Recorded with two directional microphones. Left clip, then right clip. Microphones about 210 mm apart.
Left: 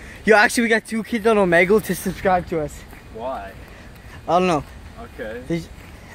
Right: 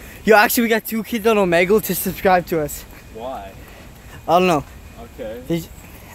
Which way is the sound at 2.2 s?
30° right (ahead or behind).